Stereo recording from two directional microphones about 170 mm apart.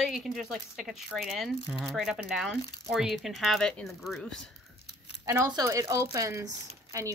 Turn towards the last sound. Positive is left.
turn(degrees=-20)  # may be behind; listen again after turning